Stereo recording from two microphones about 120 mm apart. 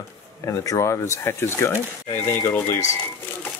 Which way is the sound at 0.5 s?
25° left (ahead or behind).